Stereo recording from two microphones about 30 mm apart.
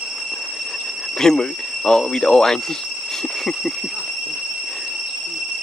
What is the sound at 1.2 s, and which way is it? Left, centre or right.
Speech, centre.